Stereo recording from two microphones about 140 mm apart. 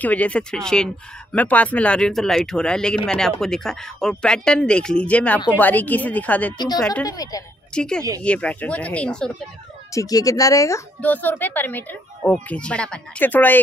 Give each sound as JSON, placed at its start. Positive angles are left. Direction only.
{"t": 0.0, "sound": "a woman's voice", "side_deg": 10}
{"t": 7.1, "sound": "speech", "side_deg": 25}
{"t": 7.7, "sound": "a woman's voice", "side_deg": 5}
{"t": 9.9, "sound": "speech", "side_deg": 25}
{"t": 11.0, "sound": "a woman's voice", "side_deg": 10}